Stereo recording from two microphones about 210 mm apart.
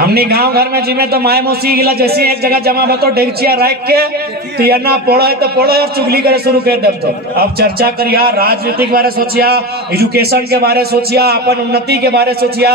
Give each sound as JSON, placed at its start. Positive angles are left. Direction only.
{"t": 0.0, "sound": "a man's voice", "side_deg": -50}